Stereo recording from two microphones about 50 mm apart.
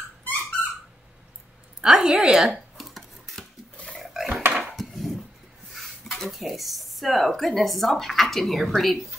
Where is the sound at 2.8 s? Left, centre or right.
Centre.